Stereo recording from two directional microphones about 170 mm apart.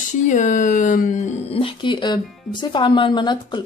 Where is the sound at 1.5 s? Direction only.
30° left (ahead or behind).